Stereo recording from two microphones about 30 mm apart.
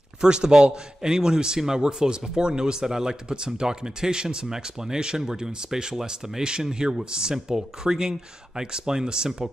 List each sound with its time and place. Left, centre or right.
0.2 s speech: right